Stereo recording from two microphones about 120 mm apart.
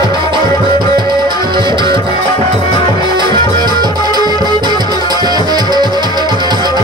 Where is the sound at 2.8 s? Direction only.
40° left (ahead or behind).